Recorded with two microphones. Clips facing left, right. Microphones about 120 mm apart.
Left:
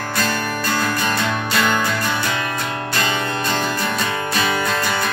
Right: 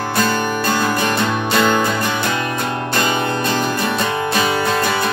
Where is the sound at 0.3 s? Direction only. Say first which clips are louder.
Right 4 dB; 20° right (ahead or behind).